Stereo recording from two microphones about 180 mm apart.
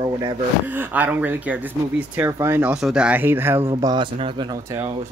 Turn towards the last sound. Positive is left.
turn(degrees=-15)  # may be behind; listen again after turning